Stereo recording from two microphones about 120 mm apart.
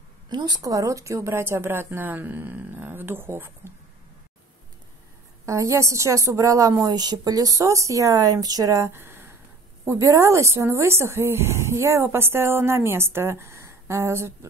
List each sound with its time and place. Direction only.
0.3 s a woman's voice: 35° right (ahead or behind); by 3.7 s 20° right (ahead or behind)
5.4 s a woman's voice: 25° right (ahead or behind)